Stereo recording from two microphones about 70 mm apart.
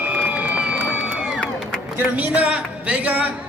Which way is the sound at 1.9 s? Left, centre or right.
Right.